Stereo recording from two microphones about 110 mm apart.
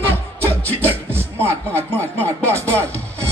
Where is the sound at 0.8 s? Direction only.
20° right (ahead or behind).